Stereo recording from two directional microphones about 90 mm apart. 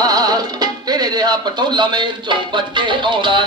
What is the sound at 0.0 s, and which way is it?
Music, 45° right (ahead or behind).